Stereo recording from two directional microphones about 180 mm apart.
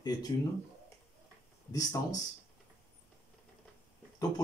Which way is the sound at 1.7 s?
20° left (ahead or behind).